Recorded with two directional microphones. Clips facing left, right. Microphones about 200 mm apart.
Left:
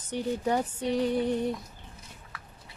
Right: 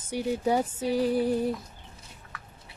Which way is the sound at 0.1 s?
10° right (ahead or behind).